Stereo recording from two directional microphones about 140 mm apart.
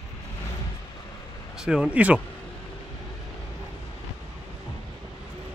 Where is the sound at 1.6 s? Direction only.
5° right (ahead or behind).